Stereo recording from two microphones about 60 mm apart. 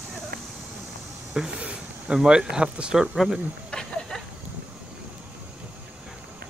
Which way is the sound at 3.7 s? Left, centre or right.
Centre.